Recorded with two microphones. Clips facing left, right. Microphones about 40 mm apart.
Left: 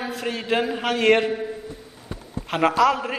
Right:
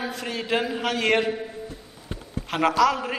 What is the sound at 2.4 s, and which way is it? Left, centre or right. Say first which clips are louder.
Speech: left 2 dB; centre.